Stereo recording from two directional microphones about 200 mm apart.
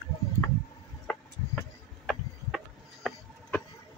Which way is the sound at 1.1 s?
Centre (ahead or behind).